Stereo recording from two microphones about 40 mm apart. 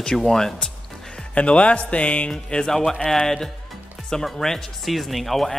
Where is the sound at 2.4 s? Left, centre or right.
Centre.